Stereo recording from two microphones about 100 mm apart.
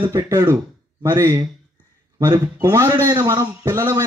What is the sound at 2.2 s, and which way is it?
Speech, 40° right (ahead or behind).